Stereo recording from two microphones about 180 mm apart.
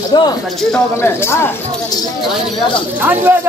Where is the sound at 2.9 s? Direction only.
10° right (ahead or behind).